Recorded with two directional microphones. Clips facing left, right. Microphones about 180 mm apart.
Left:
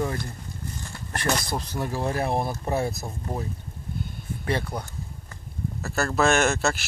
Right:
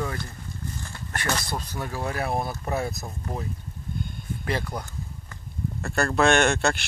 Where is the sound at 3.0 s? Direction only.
10° left (ahead or behind).